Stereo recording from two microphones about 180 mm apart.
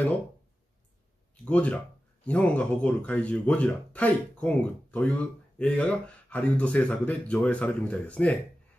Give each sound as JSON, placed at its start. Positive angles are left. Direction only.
{"t": 1.3, "sound": "speech", "side_deg": 5}